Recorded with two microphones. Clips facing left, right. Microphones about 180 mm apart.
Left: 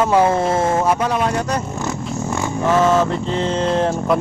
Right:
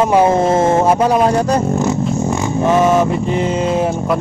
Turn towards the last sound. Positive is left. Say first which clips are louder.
# right 2 dB
turn(degrees=-10)  # may be behind; listen again after turning